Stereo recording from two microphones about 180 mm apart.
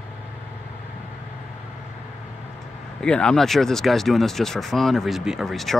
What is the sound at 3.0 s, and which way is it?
Speech, 5° left (ahead or behind).